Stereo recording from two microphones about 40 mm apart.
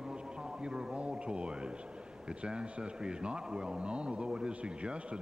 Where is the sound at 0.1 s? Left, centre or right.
Right.